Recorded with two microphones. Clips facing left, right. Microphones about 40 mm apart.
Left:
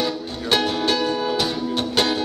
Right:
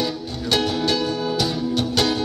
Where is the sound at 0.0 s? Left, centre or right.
Left.